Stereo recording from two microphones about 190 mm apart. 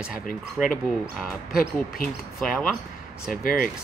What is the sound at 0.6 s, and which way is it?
Speech, 5° right (ahead or behind).